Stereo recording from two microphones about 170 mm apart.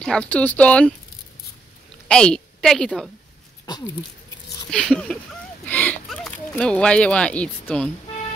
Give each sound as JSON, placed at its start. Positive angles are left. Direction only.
{"t": 0.0, "sound": "speech", "side_deg": 5}
{"t": 2.0, "sound": "a woman's voice", "side_deg": 5}
{"t": 3.6, "sound": "speech", "side_deg": 25}
{"t": 4.6, "sound": "speech", "side_deg": 5}